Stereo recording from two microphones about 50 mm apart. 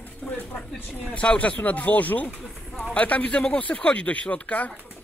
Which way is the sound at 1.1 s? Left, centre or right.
Left.